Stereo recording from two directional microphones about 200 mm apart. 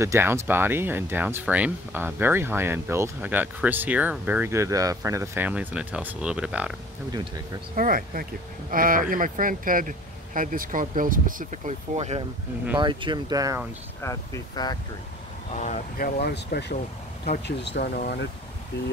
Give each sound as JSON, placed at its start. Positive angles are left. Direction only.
{"t": 0.0, "sound": "speech", "side_deg": -15}
{"t": 7.7, "sound": "speech", "side_deg": -45}
{"t": 12.7, "sound": "speech", "side_deg": -25}
{"t": 14.0, "sound": "speech", "side_deg": 15}
{"t": 15.6, "sound": "speech", "side_deg": 40}